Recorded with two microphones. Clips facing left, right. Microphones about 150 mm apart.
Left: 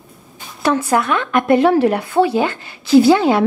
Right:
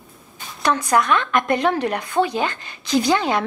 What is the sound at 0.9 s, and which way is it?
Speech, 20° left (ahead or behind).